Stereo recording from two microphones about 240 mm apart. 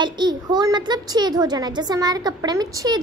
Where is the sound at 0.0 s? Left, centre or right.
Centre.